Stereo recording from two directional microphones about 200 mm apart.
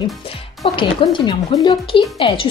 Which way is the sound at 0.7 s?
25° left (ahead or behind).